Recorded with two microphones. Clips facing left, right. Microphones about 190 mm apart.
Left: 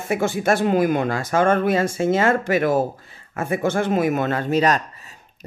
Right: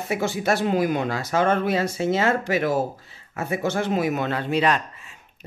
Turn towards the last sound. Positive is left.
turn(degrees=40)  # may be behind; listen again after turning